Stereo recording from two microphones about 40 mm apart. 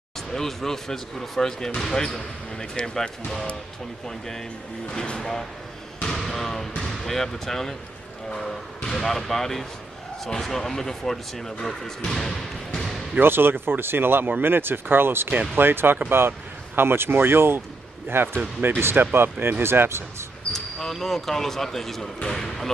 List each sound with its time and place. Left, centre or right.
0.3 s speech: centre
6.1 s basketball bounce: centre
6.8 s speech: centre
13.2 s speech: right
18.6 s speech: right
19.1 s speech: right
20.5 s speech: centre
22.3 s basketball bounce: centre